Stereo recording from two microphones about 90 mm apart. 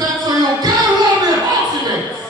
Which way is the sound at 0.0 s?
45° right (ahead or behind).